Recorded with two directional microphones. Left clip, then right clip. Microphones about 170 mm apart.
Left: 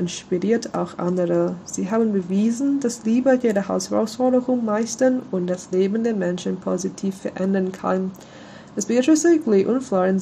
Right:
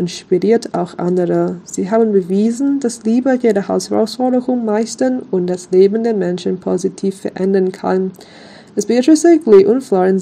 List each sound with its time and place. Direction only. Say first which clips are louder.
0.0 s speech: right 9 dB; 35° right (ahead or behind)